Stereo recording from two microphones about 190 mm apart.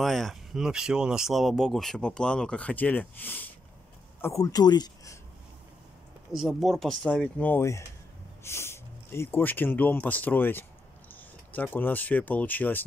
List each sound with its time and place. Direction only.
0.0 s speech: centre (ahead or behind); by 5.2 s 20° left (ahead or behind)
6.3 s speech: centre (ahead or behind)